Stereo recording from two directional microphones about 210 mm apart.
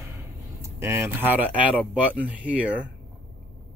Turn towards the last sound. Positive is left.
turn(degrees=-5)  # may be behind; listen again after turning